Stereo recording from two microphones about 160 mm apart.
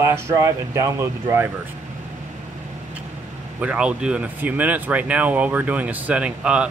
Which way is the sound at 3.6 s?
5° right (ahead or behind).